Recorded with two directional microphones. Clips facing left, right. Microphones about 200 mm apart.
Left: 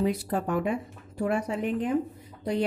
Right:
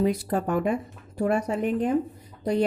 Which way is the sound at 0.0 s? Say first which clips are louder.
Right 3 dB; 40° right (ahead or behind).